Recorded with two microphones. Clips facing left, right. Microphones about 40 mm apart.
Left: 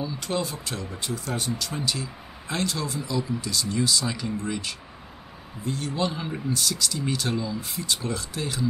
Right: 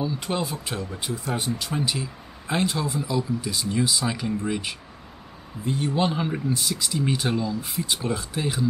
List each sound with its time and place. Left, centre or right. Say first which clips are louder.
0.0 s speech: right 2 dB; centre